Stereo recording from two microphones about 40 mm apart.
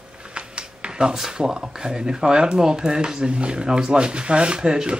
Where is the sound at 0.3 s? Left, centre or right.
Right.